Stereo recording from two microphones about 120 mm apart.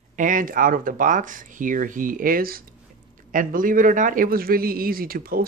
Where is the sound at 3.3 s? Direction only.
90° right.